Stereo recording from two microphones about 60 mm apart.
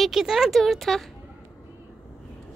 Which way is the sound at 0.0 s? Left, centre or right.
Centre.